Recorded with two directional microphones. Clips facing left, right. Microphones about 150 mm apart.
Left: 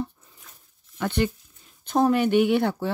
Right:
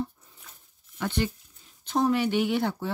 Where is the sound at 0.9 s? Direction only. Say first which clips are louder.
Left 4 dB; 55° left (ahead or behind).